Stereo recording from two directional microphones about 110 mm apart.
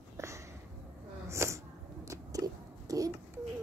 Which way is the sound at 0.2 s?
25° right (ahead or behind).